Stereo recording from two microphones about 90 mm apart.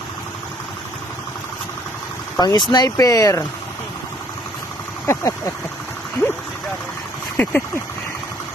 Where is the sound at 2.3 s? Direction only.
50° left (ahead or behind).